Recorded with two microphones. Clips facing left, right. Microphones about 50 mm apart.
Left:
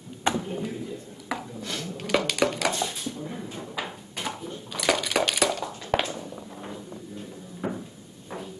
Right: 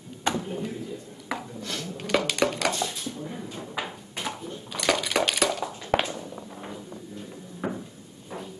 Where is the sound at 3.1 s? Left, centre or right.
Centre.